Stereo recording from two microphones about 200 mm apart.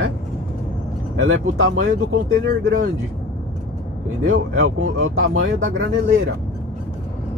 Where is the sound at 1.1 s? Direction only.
80° right.